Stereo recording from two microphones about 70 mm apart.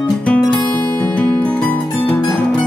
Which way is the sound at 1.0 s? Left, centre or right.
Centre.